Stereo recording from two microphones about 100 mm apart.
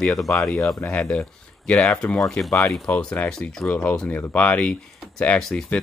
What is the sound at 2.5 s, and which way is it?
Speech, 25° left (ahead or behind).